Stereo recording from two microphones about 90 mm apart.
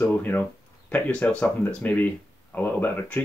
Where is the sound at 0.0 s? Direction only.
20° left (ahead or behind).